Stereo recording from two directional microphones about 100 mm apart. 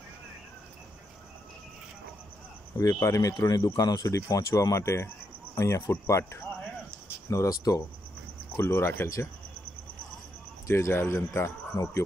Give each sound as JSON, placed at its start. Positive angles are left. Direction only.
{"t": 2.8, "sound": "speech", "side_deg": 30}
{"t": 8.5, "sound": "speech", "side_deg": 25}
{"t": 10.7, "sound": "speech", "side_deg": 25}